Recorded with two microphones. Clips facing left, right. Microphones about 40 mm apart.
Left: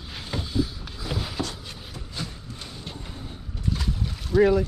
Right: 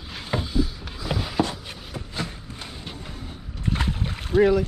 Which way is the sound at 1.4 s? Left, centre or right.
Right.